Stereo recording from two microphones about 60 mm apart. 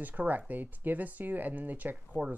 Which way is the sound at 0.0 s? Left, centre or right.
Right.